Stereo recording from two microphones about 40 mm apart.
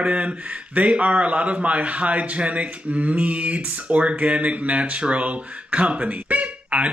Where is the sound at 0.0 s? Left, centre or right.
Right.